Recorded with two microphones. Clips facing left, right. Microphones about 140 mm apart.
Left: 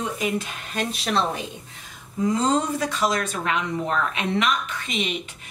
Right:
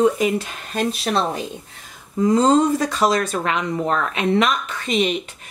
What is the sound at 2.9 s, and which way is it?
Speech, 35° right (ahead or behind).